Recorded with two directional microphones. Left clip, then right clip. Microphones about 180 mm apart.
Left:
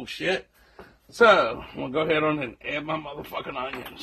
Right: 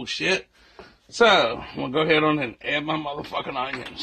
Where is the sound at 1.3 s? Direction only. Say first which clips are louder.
Even; 45° right (ahead or behind).